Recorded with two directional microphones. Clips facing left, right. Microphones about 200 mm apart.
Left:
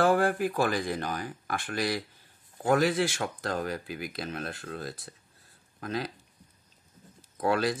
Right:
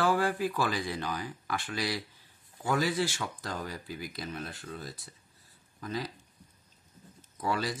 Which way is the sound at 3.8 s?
70° left (ahead or behind).